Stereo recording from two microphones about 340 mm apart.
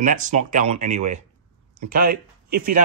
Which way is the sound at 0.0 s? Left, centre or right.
Right.